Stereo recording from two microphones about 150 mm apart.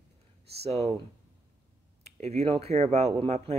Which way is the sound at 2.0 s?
45° right (ahead or behind).